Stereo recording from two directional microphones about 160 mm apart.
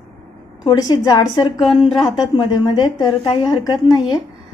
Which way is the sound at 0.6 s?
30° left (ahead or behind).